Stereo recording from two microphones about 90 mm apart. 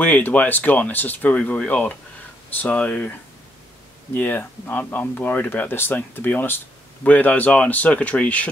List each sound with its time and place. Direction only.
0.0 s speech: 15° left (ahead or behind)